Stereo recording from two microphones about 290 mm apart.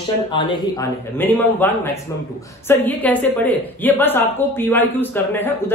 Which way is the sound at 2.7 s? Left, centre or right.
Centre.